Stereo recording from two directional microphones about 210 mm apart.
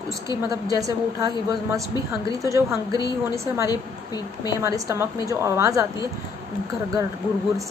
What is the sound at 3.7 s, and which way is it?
Speech, 20° left (ahead or behind).